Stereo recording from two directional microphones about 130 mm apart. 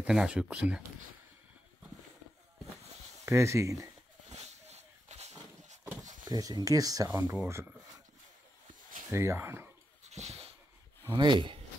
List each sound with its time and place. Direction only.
0.0 s speech: 5° right (ahead or behind)
3.3 s speech: 20° right (ahead or behind)
4.3 s a sound: 55° right (ahead or behind)
6.2 s speech: 30° right (ahead or behind)
9.1 s speech: 20° right (ahead or behind)
10.0 s a sound: 55° right (ahead or behind)
11.1 s speech: 35° right (ahead or behind)